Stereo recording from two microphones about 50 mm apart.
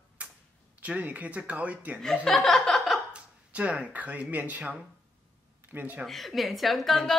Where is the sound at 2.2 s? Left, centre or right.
Centre.